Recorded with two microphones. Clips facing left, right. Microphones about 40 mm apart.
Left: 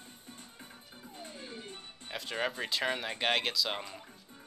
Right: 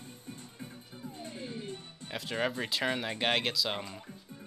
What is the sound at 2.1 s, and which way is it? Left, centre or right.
Speech, centre.